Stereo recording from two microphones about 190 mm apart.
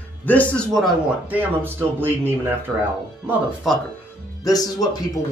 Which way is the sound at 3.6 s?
Centre (ahead or behind).